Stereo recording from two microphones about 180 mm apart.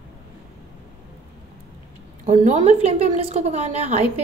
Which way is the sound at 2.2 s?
45° right (ahead or behind).